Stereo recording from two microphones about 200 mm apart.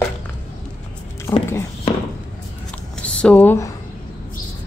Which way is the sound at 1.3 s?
15° left (ahead or behind).